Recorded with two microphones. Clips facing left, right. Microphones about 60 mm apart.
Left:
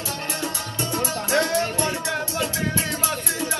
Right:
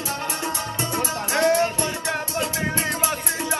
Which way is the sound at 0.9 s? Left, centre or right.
Right.